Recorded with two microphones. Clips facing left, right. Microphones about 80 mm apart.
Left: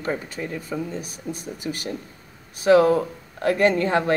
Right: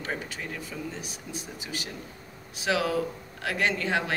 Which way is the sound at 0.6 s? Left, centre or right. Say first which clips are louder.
Left 7 dB; left.